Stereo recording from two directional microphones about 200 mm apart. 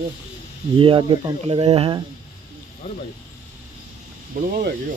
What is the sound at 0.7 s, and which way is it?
Speech, 25° right (ahead or behind).